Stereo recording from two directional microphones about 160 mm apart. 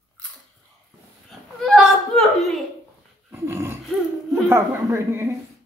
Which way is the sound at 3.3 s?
15° right (ahead or behind).